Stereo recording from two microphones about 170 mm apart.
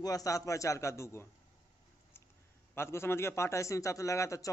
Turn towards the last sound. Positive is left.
turn(degrees=20)  # may be behind; listen again after turning